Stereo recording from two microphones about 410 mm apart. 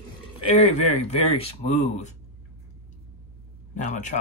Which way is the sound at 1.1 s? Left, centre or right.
Left.